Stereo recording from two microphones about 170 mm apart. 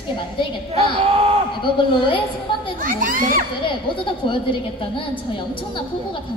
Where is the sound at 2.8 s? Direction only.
55° right (ahead or behind).